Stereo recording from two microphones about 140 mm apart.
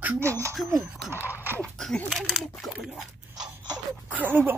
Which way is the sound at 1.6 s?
5° left (ahead or behind).